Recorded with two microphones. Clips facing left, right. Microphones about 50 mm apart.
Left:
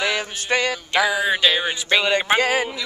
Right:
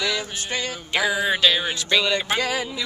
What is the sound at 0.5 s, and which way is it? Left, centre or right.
Music, left.